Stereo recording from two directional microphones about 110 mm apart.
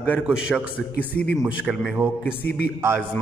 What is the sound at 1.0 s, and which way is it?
Speech, 15° left (ahead or behind).